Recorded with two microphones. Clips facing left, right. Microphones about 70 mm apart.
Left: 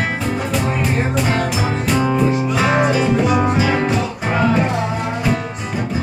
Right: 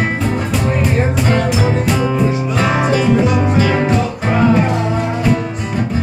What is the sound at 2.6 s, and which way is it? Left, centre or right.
Music, centre.